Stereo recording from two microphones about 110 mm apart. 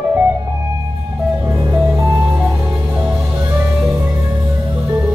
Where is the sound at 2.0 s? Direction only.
30° right (ahead or behind).